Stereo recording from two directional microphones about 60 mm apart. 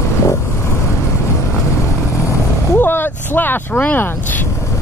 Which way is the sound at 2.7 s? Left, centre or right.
Left.